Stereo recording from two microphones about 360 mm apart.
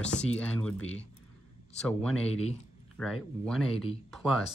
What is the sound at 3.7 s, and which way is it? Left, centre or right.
Speech, centre.